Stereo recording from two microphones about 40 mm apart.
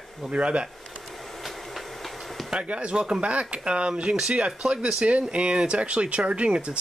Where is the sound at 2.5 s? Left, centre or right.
Right.